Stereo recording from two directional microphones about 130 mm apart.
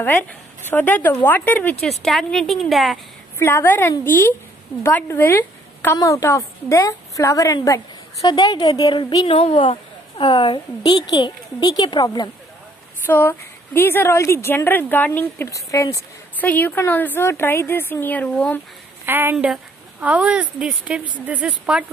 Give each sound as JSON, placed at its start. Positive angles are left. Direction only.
{"t": 0.0, "sound": "a woman's voice", "side_deg": 15}
{"t": 1.8, "sound": "speech", "side_deg": 0}
{"t": 3.3, "sound": "a woman's voice", "side_deg": 20}
{"t": 13.0, "sound": "a woman's voice", "side_deg": 15}
{"t": 15.4, "sound": "speech", "side_deg": 25}
{"t": 16.3, "sound": "a woman's voice", "side_deg": 15}
{"t": 19.0, "sound": "a woman's voice", "side_deg": -15}